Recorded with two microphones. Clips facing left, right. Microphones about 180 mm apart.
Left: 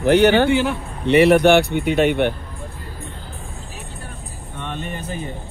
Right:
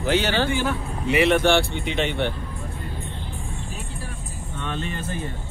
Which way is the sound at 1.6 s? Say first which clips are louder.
Left 8 dB; 60° left (ahead or behind).